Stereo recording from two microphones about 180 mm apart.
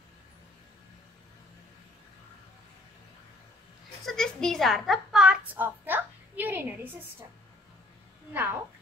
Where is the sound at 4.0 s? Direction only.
5° left (ahead or behind).